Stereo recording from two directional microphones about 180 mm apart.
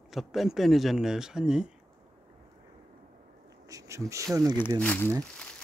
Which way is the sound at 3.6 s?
15° right (ahead or behind).